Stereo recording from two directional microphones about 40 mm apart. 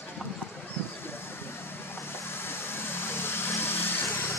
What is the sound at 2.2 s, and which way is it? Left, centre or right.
Vehicle, left.